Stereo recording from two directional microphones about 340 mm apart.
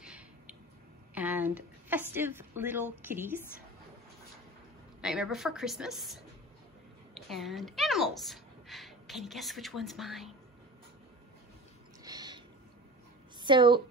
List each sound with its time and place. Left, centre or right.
0.0 s a sound: centre
1.1 s speech: centre
5.0 s a woman's voice: centre
12.0 s owl: centre
13.4 s speech: centre